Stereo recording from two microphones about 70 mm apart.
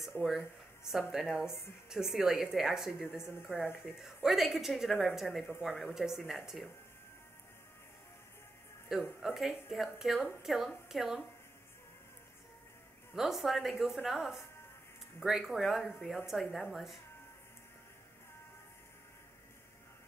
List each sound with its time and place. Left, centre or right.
0.2 s speech: centre
0.8 s a woman's voice: centre
3.2 s speech: left
3.8 s a woman's voice: centre
8.8 s a woman's voice: centre
13.1 s a woman's voice: centre